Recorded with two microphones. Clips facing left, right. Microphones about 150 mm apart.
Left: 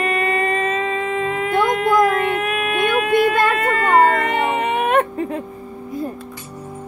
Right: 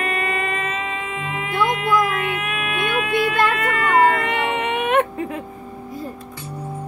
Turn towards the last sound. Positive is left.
turn(degrees=35)  # may be behind; listen again after turning